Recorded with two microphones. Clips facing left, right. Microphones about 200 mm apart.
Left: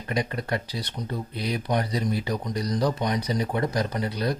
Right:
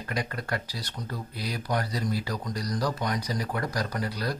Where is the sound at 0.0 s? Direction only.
20° left (ahead or behind).